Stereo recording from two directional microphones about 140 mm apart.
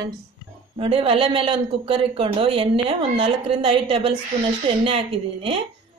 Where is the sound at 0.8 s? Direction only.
40° right (ahead or behind).